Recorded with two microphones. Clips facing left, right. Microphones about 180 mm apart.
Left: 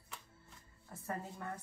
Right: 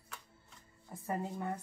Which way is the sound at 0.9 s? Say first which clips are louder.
Right 5 dB; 15° right (ahead or behind).